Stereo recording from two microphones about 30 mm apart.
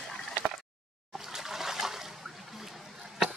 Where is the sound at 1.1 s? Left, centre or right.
Centre.